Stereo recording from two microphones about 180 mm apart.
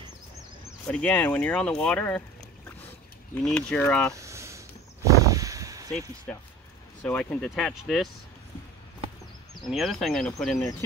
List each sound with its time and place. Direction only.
0.8 s speech: 10° left (ahead or behind)
3.4 s speech: 5° left (ahead or behind)
4.1 s a sound: 15° right (ahead or behind)
6.3 s speech: 5° left (ahead or behind)
9.6 s speech: centre (ahead or behind)